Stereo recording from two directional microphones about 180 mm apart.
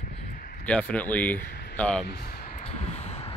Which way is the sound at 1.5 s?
60° left (ahead or behind).